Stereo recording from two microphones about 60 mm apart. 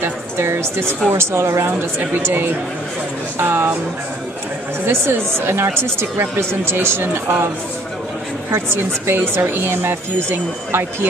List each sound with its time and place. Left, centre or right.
0.0 s speech: right
1.7 s speech: right
4.8 s speech: right
8.5 s speech: right